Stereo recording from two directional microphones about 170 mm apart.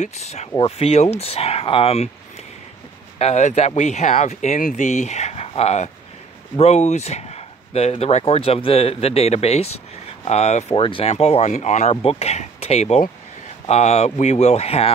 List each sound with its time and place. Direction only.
0.0 s speech: 40° left (ahead or behind)
3.2 s speech: 40° left (ahead or behind)